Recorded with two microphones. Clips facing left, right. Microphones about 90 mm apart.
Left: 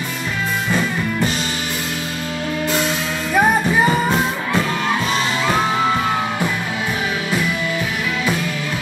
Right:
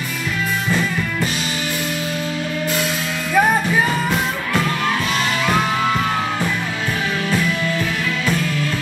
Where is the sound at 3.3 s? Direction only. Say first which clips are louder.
Even; 20° left (ahead or behind).